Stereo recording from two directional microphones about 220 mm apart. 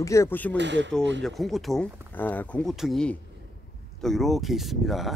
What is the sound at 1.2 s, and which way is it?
Speech, centre (ahead or behind).